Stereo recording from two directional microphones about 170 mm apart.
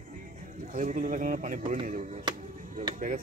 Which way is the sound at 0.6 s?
50° right (ahead or behind).